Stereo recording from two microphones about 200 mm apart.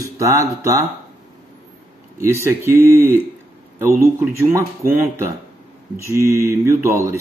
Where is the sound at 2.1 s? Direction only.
15° right (ahead or behind).